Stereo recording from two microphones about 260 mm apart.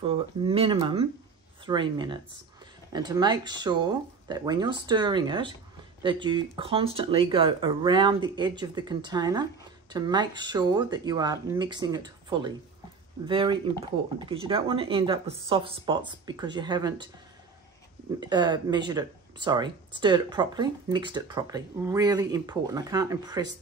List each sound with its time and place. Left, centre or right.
0.0 s speech: centre
18.2 s speech: centre